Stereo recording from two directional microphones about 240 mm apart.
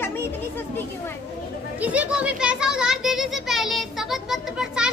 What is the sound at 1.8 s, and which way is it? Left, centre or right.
A child's voice, centre.